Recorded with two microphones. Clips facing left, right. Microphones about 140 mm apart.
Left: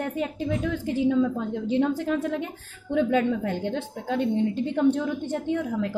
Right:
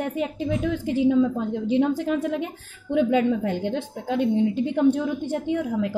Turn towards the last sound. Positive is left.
turn(degrees=-15)  # may be behind; listen again after turning